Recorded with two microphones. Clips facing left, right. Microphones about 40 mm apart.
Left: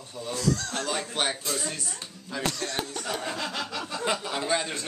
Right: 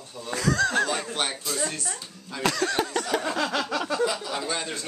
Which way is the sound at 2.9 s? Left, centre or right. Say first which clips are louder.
Right 5 dB; right.